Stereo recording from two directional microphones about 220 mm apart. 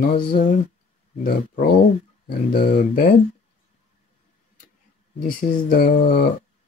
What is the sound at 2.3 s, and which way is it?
Speech, 45° left (ahead or behind).